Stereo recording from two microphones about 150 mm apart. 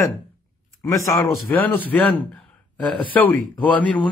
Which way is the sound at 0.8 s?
20° left (ahead or behind).